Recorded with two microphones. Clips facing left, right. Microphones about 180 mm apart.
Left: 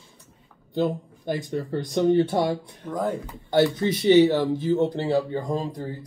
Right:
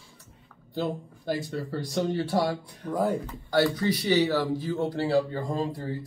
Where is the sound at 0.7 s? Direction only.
20° left (ahead or behind).